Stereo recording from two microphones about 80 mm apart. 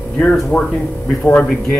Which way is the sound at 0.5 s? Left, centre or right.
Left.